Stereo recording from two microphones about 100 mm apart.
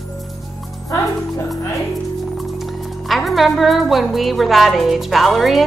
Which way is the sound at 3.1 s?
Centre (ahead or behind).